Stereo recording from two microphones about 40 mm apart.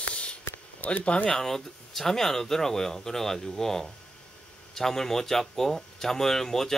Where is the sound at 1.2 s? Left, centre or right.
Centre.